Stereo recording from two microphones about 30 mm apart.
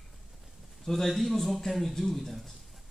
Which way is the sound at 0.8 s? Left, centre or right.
Centre.